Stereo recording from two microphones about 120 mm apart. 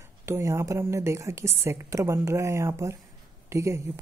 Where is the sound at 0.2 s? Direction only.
20° right (ahead or behind).